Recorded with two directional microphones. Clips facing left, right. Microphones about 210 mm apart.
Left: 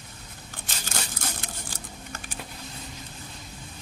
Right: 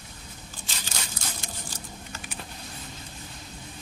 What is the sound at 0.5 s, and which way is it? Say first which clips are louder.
Scissors: left 4 dB; 50° left (ahead or behind).